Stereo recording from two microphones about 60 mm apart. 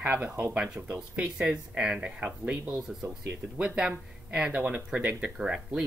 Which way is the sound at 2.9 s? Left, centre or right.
Centre.